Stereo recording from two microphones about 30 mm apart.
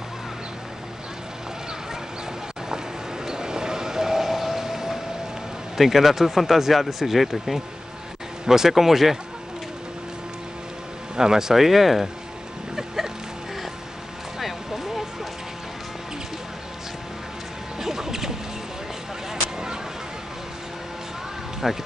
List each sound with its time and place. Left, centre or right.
3.3 s train: right
5.8 s speech: centre
11.1 s speech: centre
11.6 s speech: centre
12.7 s a sound: centre
14.4 s music: centre
17.7 s a sound: centre
21.6 s speech: centre